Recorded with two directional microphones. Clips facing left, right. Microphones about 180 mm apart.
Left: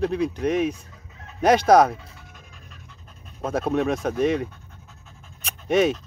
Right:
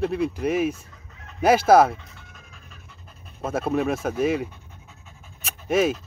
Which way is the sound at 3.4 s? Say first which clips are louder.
Left 1 dB; 5° right (ahead or behind).